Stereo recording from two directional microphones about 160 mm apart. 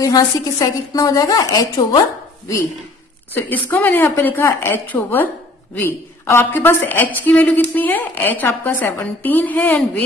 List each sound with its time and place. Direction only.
0.0 s a woman's voice: 20° left (ahead or behind)
3.3 s a woman's voice: 10° left (ahead or behind)